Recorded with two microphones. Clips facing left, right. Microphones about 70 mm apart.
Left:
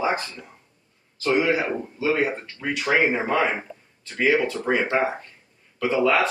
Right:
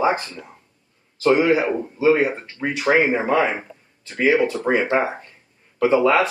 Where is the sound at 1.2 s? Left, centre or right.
Right.